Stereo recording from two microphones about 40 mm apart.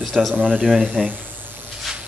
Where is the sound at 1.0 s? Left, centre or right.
Right.